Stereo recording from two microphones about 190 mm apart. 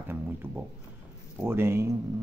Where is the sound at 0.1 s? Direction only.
10° right (ahead or behind).